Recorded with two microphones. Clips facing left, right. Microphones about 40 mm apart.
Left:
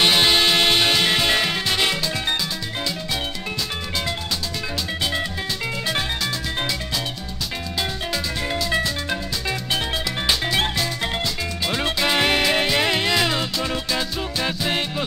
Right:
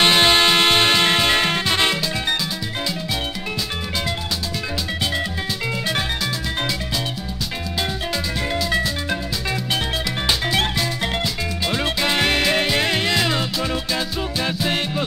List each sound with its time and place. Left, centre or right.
0.0 s music: centre
1.3 s music: right
1.7 s music: centre
8.5 s music: centre
10.2 s music: centre
11.6 s music: centre